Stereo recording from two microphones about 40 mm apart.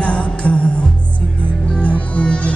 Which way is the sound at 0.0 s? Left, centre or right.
Left.